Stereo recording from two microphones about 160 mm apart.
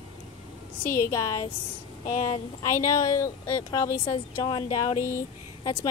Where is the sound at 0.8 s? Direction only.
15° left (ahead or behind).